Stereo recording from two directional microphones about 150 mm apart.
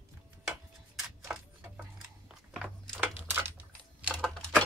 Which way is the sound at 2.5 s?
10° right (ahead or behind).